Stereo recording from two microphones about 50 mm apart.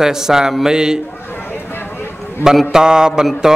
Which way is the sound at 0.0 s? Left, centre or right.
Centre.